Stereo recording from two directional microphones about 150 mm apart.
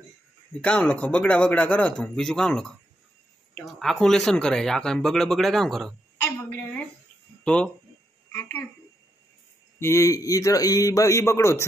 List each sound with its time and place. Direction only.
0.7 s a woman's voice: 10° left (ahead or behind)
9.8 s a man's voice: 20° left (ahead or behind)